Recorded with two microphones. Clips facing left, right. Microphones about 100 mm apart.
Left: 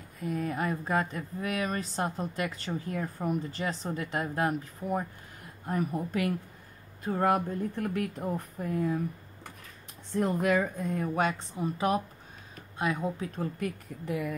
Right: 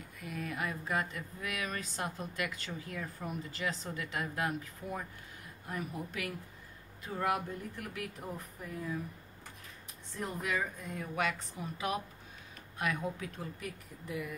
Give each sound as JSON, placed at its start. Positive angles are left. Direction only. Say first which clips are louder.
{"t": 0.2, "sound": "speech", "louder": "left 7 dB", "side_deg": 35}
{"t": 5.7, "sound": "speech", "louder": "left 9 dB", "side_deg": 40}
{"t": 10.1, "sound": "speech", "louder": "left 11 dB", "side_deg": 60}
{"t": 10.6, "sound": "speech", "louder": "left 8 dB", "side_deg": 45}
{"t": 14.0, "sound": "speech", "louder": "left 7 dB", "side_deg": 80}